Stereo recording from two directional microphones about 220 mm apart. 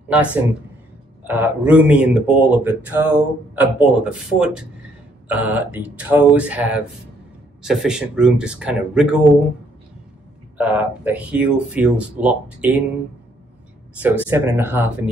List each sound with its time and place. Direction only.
0.1 s speech: 5° right (ahead or behind)
10.6 s speech: 5° right (ahead or behind)
13.9 s speech: 10° right (ahead or behind)